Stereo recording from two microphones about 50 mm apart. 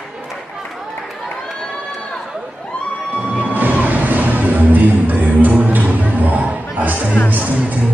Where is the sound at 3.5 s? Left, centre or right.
Right.